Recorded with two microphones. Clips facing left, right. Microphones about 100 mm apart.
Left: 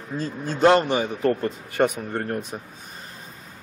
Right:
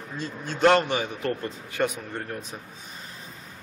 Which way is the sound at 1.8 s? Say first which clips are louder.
Left 5 dB; 60° left (ahead or behind).